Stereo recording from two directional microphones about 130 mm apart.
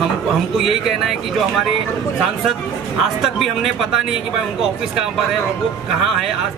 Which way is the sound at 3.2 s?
Centre (ahead or behind).